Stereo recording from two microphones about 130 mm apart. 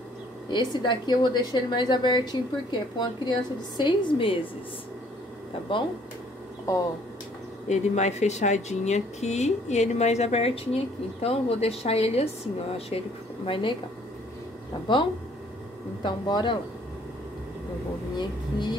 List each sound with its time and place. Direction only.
0.5 s a woman's voice: 35° left (ahead or behind)
5.7 s a woman's voice: 40° left (ahead or behind)
7.6 s a woman's voice: 60° left (ahead or behind); by 13.7 s 40° left (ahead or behind)
16.0 s a woman's voice: 35° left (ahead or behind)
18.1 s a woman's voice: 35° left (ahead or behind)